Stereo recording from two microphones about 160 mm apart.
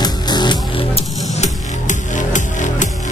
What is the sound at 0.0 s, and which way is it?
Music, 25° left (ahead or behind).